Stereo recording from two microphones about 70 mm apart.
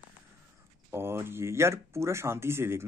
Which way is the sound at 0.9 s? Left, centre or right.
Right.